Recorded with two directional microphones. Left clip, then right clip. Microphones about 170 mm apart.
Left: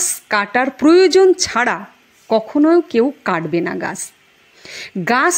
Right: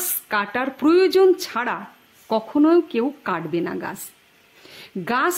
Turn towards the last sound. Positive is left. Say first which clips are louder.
# left 6 dB
turn(degrees=20)  # may be behind; listen again after turning